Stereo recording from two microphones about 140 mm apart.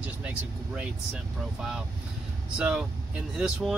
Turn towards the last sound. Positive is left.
turn(degrees=-5)  # may be behind; listen again after turning